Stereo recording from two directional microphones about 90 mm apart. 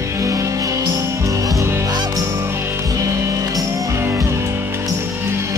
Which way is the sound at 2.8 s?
40° right (ahead or behind).